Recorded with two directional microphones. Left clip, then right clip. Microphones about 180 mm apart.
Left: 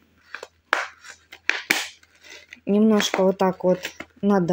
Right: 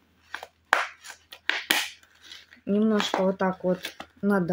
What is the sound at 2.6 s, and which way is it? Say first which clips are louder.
Speech: left 5 dB; 30° left (ahead or behind).